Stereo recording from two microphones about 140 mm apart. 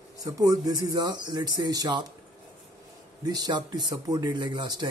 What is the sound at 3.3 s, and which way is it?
Speech, 25° right (ahead or behind).